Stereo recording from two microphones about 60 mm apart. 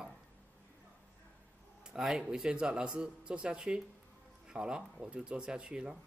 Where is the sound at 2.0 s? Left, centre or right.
Centre.